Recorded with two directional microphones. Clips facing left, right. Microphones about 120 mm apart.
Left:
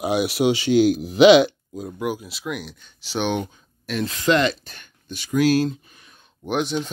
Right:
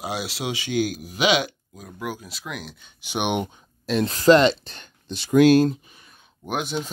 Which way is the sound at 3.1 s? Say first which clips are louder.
Left 1 dB; 20° right (ahead or behind).